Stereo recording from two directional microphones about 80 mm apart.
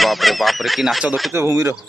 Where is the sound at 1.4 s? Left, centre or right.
Right.